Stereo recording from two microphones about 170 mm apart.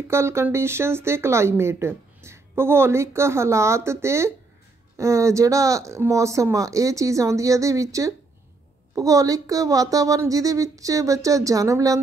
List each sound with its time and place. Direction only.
0.1 s speech: 15° right (ahead or behind)